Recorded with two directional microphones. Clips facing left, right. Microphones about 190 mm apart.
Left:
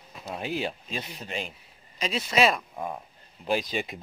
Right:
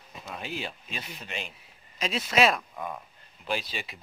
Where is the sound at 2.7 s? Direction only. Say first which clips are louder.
Left 2 dB; 25° left (ahead or behind).